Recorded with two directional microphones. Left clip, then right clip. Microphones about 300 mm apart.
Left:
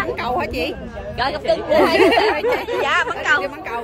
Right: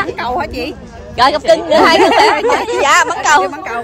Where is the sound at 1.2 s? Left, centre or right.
Right.